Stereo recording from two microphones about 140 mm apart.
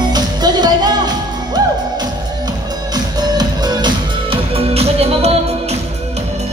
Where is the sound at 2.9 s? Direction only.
30° right (ahead or behind).